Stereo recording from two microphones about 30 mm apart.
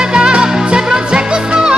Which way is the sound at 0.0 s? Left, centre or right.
Right.